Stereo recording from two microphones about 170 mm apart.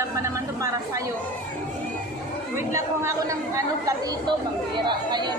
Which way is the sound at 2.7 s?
15° right (ahead or behind).